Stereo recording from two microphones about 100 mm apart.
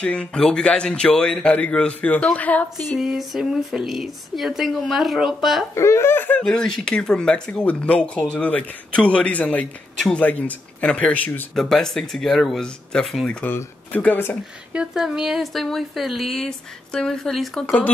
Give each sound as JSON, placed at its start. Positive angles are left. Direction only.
{"t": 0.0, "sound": "speech", "side_deg": 10}
{"t": 2.8, "sound": "speech", "side_deg": 0}
{"t": 5.8, "sound": "speech", "side_deg": 30}
{"t": 6.4, "sound": "speech", "side_deg": 5}
{"t": 9.9, "sound": "speech", "side_deg": 0}
{"t": 10.2, "sound": "speech", "side_deg": 15}
{"t": 11.5, "sound": "speech", "side_deg": 5}
{"t": 13.4, "sound": "speech", "side_deg": 20}
{"t": 14.7, "sound": "speech", "side_deg": -5}